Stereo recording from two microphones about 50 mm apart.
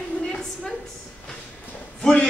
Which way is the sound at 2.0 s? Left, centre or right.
Centre.